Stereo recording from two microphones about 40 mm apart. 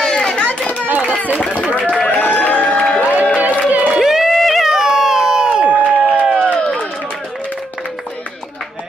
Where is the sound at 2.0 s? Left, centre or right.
Left.